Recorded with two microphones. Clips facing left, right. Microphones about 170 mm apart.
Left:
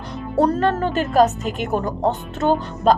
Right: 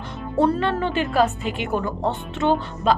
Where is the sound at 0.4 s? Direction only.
40° left (ahead or behind).